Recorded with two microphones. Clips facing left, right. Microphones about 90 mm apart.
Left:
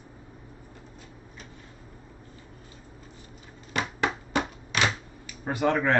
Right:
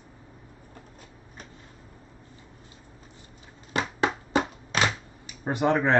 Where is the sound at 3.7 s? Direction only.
30° right (ahead or behind).